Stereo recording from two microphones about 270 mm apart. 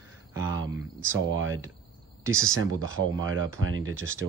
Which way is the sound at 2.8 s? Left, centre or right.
Right.